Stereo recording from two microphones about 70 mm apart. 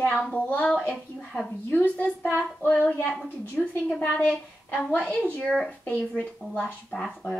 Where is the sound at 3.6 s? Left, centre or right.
Centre.